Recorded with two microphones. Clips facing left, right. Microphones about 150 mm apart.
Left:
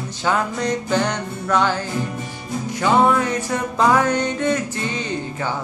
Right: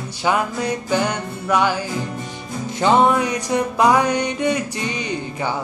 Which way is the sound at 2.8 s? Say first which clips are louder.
Right 1 dB; 20° right (ahead or behind).